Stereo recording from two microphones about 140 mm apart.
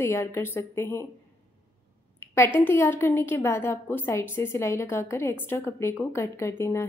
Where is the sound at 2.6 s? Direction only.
15° left (ahead or behind).